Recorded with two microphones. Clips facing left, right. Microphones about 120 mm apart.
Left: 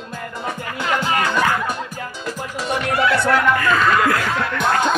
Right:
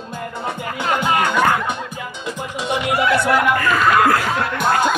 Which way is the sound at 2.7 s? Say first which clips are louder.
Right 1 dB; 15° right (ahead or behind).